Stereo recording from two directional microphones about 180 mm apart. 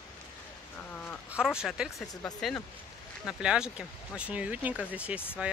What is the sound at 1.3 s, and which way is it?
Speech, 5° right (ahead or behind).